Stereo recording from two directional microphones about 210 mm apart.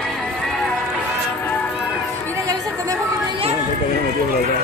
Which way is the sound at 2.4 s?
15° right (ahead or behind).